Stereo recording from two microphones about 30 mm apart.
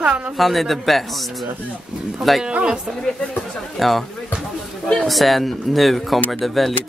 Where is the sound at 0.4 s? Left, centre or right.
Centre.